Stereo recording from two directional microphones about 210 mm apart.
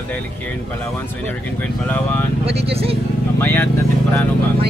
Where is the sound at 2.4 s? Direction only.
30° right (ahead or behind).